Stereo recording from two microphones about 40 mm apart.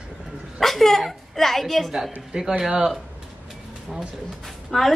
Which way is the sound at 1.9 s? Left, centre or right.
Centre.